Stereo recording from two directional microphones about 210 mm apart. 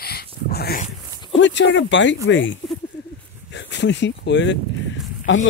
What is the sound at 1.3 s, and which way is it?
Speech, 60° left (ahead or behind).